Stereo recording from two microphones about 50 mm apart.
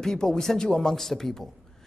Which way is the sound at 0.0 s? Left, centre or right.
Centre.